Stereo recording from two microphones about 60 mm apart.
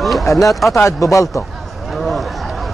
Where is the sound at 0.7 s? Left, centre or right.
Left.